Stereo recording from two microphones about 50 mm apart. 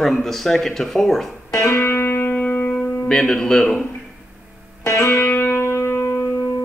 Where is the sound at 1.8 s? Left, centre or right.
Left.